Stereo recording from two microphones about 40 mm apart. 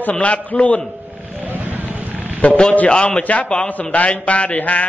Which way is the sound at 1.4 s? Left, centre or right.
Right.